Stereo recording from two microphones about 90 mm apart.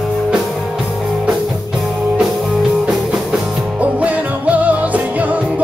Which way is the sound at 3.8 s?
15° right (ahead or behind).